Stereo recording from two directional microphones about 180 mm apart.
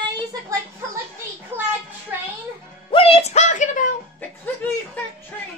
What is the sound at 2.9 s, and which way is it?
Music, 30° left (ahead or behind).